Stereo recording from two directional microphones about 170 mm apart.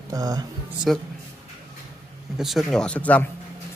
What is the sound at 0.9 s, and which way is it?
Speech, centre (ahead or behind).